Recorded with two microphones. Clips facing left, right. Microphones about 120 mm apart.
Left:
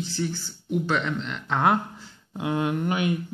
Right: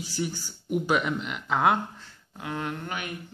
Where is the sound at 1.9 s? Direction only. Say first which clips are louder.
Left 8 dB; 15° left (ahead or behind).